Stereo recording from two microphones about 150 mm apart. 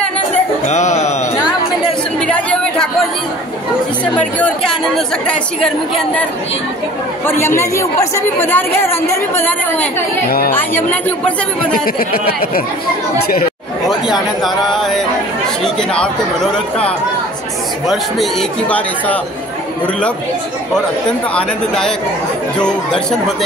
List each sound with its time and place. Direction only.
0.7 s speech: 50° left (ahead or behind)
2.1 s a sound: 10° left (ahead or behind)
4.0 s a woman's voice: 10° left (ahead or behind)
7.2 s a woman's voice: 15° left (ahead or behind)
11.7 s speech: 75° left (ahead or behind)
12.3 s speech: 90° left
13.8 s speech: centre (ahead or behind)
17.8 s speech: centre (ahead or behind)
21.4 s speech: 5° left (ahead or behind)